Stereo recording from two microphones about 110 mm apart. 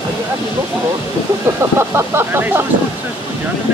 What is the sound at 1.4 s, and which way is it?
Speech, 25° right (ahead or behind).